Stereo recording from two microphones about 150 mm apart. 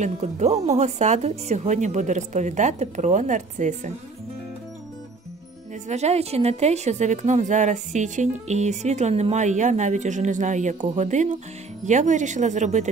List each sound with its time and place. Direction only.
0.0 s a woman's voice: 50° right (ahead or behind)
5.9 s a woman's voice: 45° right (ahead or behind)